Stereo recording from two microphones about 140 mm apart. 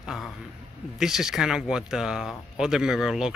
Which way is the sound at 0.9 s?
5° right (ahead or behind).